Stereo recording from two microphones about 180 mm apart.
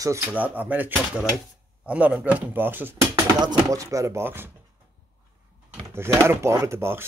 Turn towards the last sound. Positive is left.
turn(degrees=-15)  # may be behind; listen again after turning